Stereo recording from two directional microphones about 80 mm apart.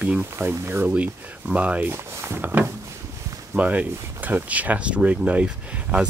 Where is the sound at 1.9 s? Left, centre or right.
Right.